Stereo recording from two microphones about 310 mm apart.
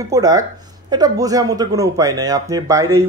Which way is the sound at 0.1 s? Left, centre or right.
Centre.